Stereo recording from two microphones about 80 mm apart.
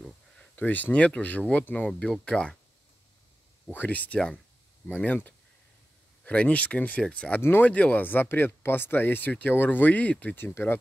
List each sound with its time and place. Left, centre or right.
0.6 s speech: left
3.7 s speech: left